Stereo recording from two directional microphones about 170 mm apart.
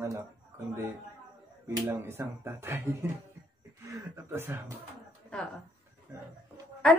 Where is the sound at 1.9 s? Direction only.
15° right (ahead or behind).